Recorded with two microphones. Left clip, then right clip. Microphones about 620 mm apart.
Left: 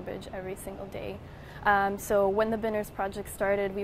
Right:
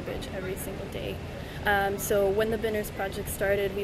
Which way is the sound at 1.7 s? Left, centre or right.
Left.